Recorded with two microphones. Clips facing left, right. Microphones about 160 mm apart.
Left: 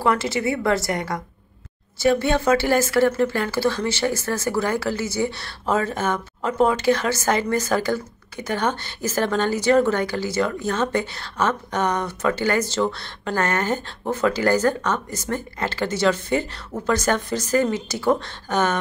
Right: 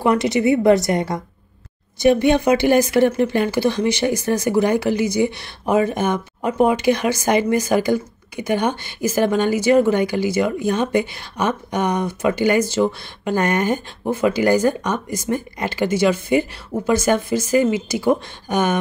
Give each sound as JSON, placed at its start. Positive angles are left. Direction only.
{"t": 0.0, "sound": "a woman's voice", "side_deg": -20}